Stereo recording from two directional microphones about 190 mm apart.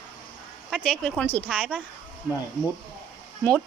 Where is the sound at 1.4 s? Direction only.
5° right (ahead or behind).